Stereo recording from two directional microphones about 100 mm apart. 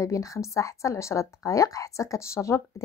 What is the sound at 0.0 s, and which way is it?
Speech, 30° left (ahead or behind).